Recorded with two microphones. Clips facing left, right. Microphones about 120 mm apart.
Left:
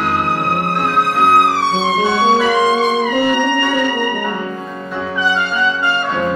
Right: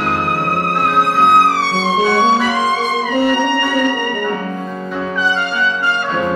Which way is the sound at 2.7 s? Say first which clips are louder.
Left 3 dB; 15° left (ahead or behind).